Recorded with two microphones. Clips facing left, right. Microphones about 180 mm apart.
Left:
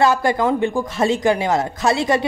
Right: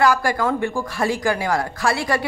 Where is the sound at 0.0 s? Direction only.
25° left (ahead or behind).